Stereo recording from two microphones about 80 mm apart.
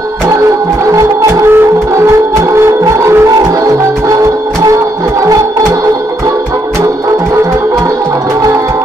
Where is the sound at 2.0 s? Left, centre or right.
Right.